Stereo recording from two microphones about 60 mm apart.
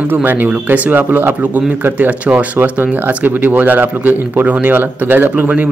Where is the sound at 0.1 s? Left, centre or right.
Right.